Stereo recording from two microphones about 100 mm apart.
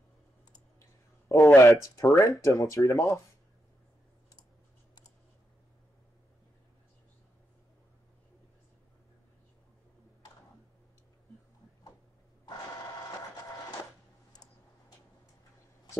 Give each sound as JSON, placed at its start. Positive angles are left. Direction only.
{"t": 1.4, "sound": "speech", "side_deg": 30}